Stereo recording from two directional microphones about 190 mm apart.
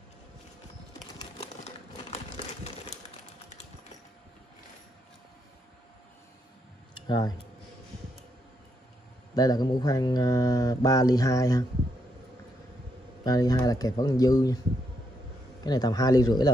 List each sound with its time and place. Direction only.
1.4 s crumpling: 35° left (ahead or behind)
6.9 s tick-tock: 25° left (ahead or behind)
9.3 s mantra: 20° left (ahead or behind)
13.2 s mantra: 20° left (ahead or behind)
15.6 s mantra: 20° left (ahead or behind)